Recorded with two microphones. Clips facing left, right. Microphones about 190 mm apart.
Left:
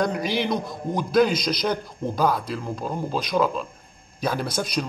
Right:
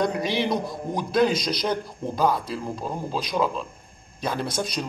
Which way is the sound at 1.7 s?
25° right (ahead or behind).